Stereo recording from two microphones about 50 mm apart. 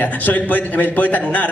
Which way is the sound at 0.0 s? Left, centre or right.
Left.